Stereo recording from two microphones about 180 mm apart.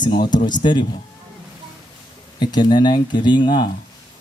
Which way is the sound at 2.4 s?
25° left (ahead or behind).